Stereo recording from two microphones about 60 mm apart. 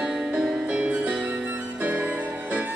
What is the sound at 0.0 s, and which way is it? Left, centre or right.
Music, centre.